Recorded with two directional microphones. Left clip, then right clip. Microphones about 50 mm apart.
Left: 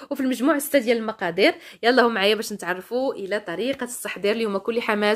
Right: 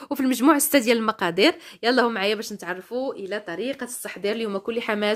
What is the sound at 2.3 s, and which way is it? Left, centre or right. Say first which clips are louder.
Speech: left 3 dB; left.